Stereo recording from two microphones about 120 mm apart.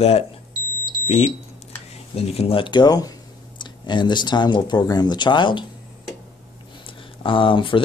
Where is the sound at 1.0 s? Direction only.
65° left (ahead or behind); by 5.7 s 40° left (ahead or behind).